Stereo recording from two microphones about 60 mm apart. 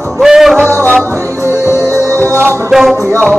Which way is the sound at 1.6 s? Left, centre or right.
Left.